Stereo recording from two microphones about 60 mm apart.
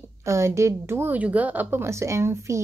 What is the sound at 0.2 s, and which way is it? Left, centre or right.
Speech, right.